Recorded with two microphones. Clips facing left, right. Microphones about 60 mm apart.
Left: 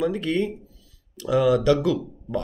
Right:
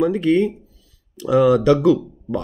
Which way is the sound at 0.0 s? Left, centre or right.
Right.